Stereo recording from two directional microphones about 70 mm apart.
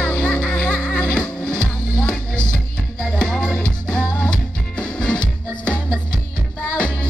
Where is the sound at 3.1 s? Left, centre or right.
Centre.